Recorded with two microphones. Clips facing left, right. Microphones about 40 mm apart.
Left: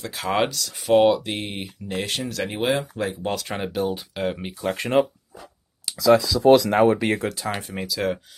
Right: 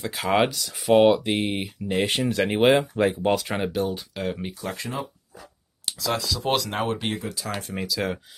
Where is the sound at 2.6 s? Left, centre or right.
Right.